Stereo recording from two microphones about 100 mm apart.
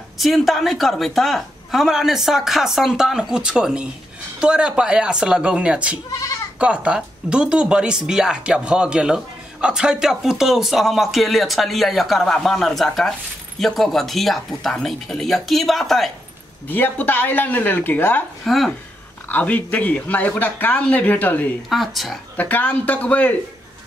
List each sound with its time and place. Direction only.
0.2 s speech: centre (ahead or behind)
16.6 s speech: 20° left (ahead or behind)
18.4 s a woman's voice: centre (ahead or behind)
19.2 s a man's voice: 15° left (ahead or behind)
21.6 s speech: centre (ahead or behind)
22.4 s a man's voice: 15° left (ahead or behind)